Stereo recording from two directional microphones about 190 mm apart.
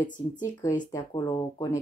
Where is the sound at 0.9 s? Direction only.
20° left (ahead or behind).